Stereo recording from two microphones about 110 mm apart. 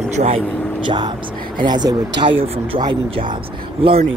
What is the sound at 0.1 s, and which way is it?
Speech, 90° right.